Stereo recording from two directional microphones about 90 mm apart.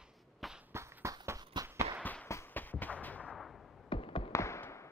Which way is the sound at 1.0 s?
35° right (ahead or behind).